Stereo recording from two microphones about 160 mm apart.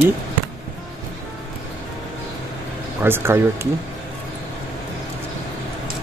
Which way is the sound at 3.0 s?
15° right (ahead or behind).